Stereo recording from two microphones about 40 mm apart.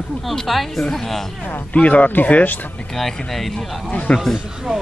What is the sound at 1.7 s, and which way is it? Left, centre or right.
Speech, left.